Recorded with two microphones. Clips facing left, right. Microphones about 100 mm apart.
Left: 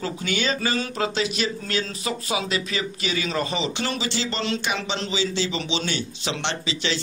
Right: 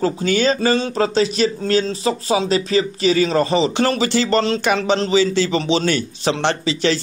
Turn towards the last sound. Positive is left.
turn(degrees=-45)  # may be behind; listen again after turning